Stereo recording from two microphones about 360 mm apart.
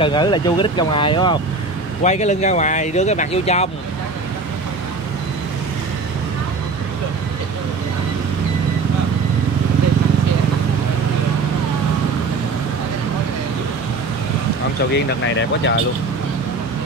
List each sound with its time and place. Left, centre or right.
0.0 s speech: centre
15.0 s speech: left